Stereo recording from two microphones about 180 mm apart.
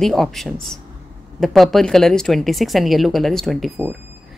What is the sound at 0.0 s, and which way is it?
Speech, centre (ahead or behind).